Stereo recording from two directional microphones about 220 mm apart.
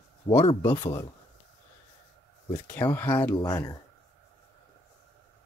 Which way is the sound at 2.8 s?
10° left (ahead or behind).